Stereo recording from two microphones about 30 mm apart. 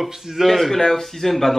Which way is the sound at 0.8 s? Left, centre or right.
Centre.